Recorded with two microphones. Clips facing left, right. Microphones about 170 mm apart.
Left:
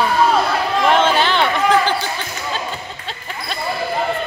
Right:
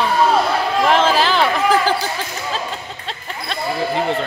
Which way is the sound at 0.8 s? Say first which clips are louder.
Left 1 dB; centre (ahead or behind).